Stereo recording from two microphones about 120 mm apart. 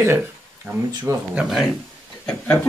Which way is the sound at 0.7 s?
10° right (ahead or behind).